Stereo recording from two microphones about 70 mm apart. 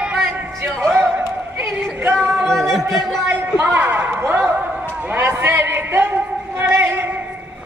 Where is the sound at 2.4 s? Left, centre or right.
Centre.